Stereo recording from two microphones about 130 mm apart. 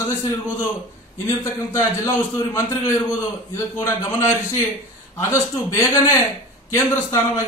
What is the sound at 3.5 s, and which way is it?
A man's voice, 20° left (ahead or behind).